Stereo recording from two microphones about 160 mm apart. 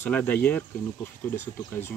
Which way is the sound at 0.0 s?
10° left (ahead or behind).